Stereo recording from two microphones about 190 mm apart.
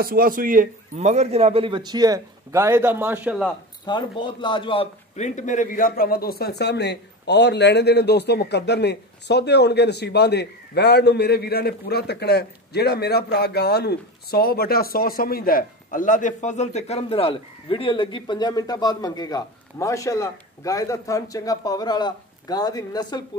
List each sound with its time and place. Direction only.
0.0 s a man's voice: 50° right (ahead or behind); by 3.3 s 10° right (ahead or behind)
3.8 s a man's voice: 25° left (ahead or behind)